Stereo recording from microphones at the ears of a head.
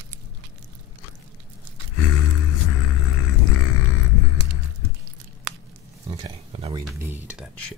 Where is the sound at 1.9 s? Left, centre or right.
Left.